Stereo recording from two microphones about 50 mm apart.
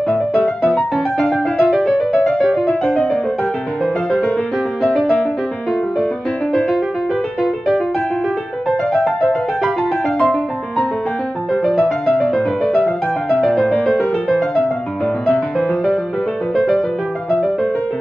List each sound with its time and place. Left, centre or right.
0.4 s music: left
1.2 s music: centre
2.6 s music: centre
4.8 s music: centre
8.6 s music: centre
11.8 s music: centre
13.7 s music: left
16.5 s music: centre